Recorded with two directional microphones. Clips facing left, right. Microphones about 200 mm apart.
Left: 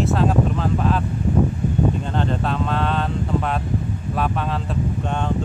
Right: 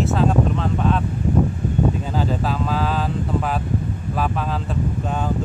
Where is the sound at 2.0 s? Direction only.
5° right (ahead or behind).